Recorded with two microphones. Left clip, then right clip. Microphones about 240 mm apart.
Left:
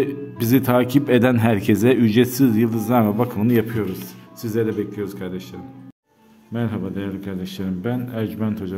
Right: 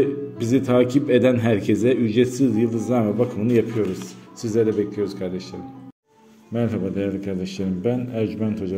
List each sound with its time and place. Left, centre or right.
0.0 s speech: left
4.4 s a man's voice: centre